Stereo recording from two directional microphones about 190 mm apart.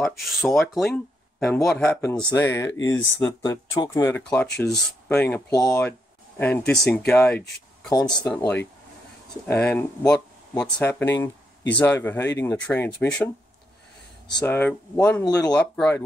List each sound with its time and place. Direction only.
0.0 s speech: centre (ahead or behind)
14.4 s speech: 10° left (ahead or behind)